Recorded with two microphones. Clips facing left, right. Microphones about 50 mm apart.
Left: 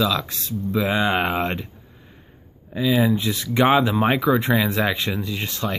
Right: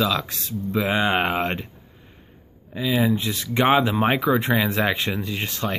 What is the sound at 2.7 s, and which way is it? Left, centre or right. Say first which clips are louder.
Speech: left 2 dB; centre.